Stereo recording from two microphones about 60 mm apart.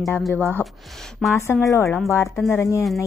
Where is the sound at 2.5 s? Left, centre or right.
Left.